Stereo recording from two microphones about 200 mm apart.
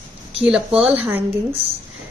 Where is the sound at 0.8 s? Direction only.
30° right (ahead or behind).